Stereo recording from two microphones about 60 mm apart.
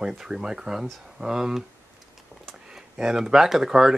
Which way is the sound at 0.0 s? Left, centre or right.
Centre.